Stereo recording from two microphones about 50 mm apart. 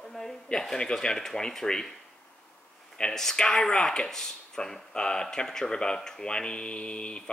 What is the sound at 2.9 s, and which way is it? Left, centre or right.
Speech, centre.